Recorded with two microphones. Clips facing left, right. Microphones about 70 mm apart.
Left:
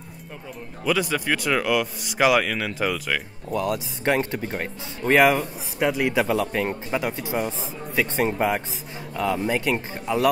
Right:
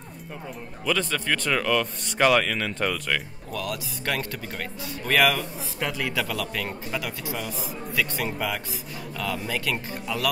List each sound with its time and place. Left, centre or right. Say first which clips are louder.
0.8 s speech: left 3 dB; centre
3.5 s a man's voice: left 6 dB; left